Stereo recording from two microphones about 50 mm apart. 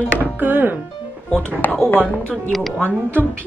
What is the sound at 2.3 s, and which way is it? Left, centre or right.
Speech, centre.